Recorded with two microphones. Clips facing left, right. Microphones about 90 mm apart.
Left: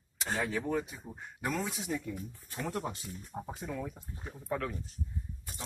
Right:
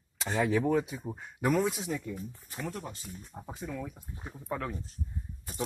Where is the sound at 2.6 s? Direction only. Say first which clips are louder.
Left 3 dB; 70° left (ahead or behind).